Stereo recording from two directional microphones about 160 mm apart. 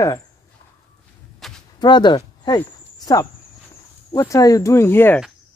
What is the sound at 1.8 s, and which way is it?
Speech, 30° left (ahead or behind).